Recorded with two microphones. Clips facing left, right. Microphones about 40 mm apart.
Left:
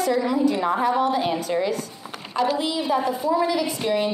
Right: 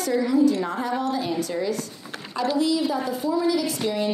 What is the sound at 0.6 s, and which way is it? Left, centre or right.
Speech, left.